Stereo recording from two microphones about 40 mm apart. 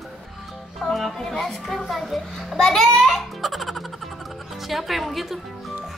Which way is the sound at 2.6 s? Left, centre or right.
Centre.